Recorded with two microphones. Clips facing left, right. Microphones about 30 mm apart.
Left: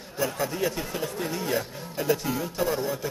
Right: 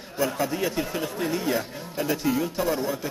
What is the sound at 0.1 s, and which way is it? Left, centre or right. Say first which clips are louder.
Speech: right 3 dB; centre.